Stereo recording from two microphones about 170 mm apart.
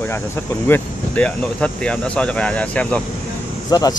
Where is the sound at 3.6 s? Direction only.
20° left (ahead or behind).